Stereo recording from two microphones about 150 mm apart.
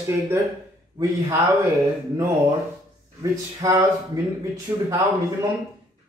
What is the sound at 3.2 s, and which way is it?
A man's voice, 20° right (ahead or behind).